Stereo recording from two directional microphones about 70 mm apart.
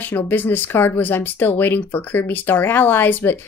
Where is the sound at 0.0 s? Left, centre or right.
Left.